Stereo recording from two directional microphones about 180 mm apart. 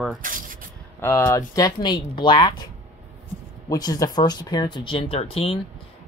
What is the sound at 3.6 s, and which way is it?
Speech, 20° left (ahead or behind).